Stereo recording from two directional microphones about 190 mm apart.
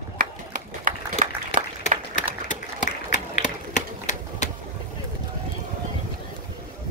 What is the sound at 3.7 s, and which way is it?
Typewriter, 40° left (ahead or behind).